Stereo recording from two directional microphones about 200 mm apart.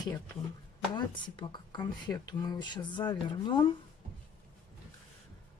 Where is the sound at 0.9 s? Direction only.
25° left (ahead or behind).